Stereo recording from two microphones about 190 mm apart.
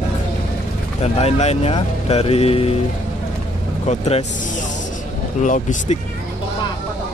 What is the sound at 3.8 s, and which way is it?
Speech, 35° left (ahead or behind).